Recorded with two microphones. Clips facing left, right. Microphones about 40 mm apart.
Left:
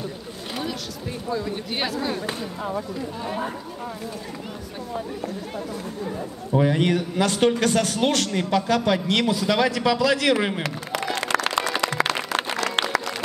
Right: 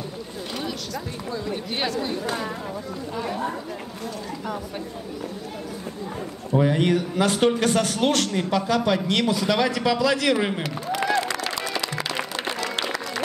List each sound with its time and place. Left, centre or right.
1.3 s speech: centre
6.5 s speech: centre
11.4 s music: left